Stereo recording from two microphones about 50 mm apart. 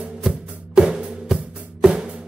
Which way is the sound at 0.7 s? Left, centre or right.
Centre.